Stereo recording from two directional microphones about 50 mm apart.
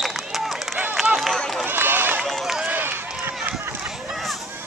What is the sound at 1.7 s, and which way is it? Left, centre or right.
Run, right.